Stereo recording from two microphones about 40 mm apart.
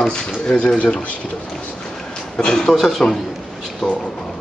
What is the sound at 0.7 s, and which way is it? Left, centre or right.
Speech, left.